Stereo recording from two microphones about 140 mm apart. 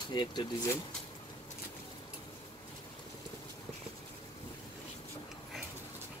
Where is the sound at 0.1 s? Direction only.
30° left (ahead or behind).